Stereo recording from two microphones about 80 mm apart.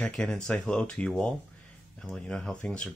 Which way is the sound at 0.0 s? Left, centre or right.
Centre.